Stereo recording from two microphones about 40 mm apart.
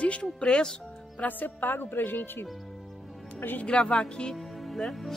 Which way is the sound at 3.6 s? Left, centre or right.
Left.